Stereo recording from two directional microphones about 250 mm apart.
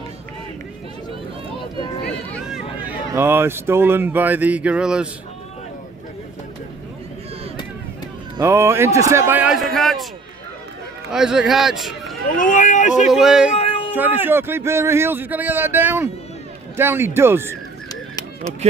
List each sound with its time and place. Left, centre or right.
3.1 s speech: centre
8.4 s speech: centre
11.1 s speech: centre
12.4 s speech: left
13.1 s speech: centre
13.6 s a sound: left
13.9 s speech: centre